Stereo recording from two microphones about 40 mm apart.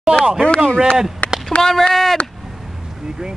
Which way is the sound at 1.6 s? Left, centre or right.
Centre.